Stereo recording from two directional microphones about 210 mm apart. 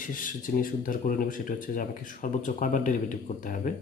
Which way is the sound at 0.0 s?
40° left (ahead or behind).